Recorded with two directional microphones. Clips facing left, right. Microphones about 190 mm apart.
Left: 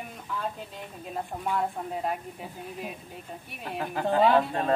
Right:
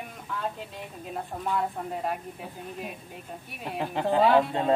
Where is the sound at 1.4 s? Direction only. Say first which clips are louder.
Even; centre (ahead or behind).